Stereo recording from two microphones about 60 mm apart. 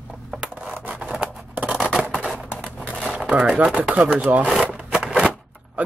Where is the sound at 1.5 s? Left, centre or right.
Right.